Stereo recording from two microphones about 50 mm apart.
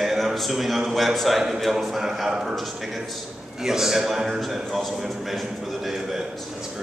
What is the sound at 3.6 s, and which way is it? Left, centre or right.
A man's voice, centre.